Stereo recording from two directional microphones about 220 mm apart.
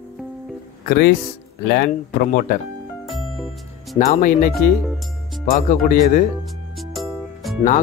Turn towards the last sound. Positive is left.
turn(degrees=0)  # may be behind; listen again after turning